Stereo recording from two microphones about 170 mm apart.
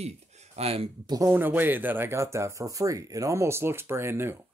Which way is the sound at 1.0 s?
20° right (ahead or behind).